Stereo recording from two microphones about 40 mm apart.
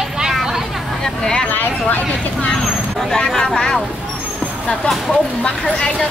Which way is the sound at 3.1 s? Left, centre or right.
Centre.